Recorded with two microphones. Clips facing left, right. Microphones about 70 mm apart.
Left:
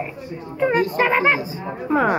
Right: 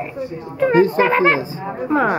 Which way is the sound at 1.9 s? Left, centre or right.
Centre.